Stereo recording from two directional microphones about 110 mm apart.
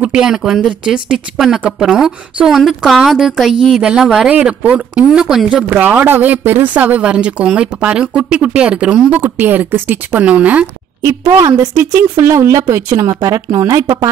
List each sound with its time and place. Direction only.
0.0 s speech: 10° right (ahead or behind)
4.3 s speech: 15° right (ahead or behind)
11.0 s a woman's voice: 25° right (ahead or behind)